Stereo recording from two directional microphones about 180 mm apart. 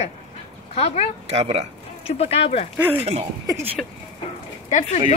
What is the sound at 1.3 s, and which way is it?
Speech, 35° right (ahead or behind).